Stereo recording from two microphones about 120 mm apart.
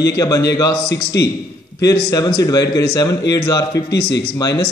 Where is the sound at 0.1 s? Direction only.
30° left (ahead or behind).